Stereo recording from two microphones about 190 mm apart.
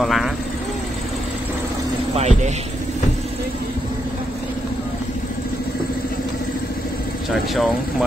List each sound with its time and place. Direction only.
0.0 s speech: centre (ahead or behind)
2.1 s speech: 35° right (ahead or behind)
7.2 s speech: centre (ahead or behind)